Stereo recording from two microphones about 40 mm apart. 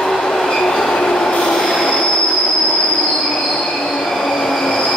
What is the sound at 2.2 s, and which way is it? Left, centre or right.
Train, left.